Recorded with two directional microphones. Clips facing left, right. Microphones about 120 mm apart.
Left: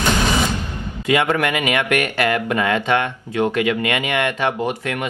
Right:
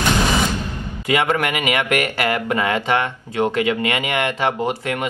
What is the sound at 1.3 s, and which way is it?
Speech, 30° right (ahead or behind).